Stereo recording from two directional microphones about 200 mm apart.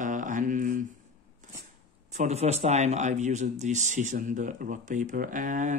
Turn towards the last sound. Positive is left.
turn(degrees=-40)  # may be behind; listen again after turning